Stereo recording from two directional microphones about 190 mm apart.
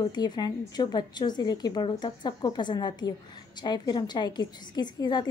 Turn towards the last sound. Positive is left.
turn(degrees=20)  # may be behind; listen again after turning